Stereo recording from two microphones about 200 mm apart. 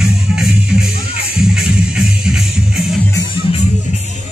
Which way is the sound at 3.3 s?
30° left (ahead or behind).